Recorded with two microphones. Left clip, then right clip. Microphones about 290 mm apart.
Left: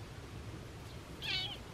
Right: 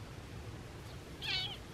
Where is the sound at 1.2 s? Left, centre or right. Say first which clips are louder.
Even; centre.